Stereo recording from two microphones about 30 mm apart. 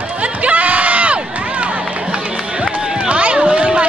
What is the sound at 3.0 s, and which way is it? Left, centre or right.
Run, right.